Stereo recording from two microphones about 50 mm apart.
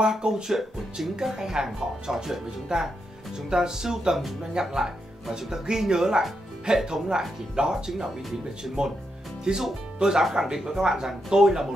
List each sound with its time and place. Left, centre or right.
0.0 s speech: centre